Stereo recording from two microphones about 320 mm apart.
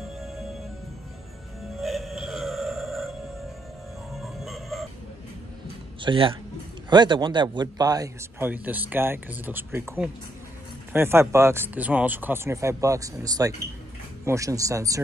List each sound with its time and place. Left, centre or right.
0.0 s music: centre
1.8 s music: centre
5.9 s a man's voice: centre